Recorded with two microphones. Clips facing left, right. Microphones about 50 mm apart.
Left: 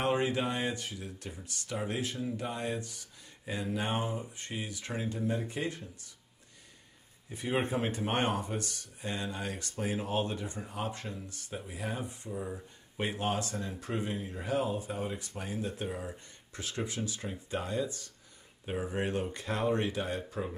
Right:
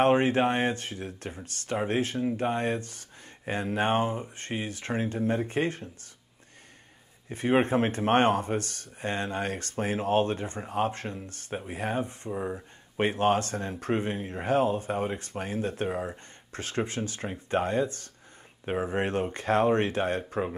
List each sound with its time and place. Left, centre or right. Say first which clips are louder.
0.0 s speech: right 8 dB; right
7.2 s speech: right 8 dB; right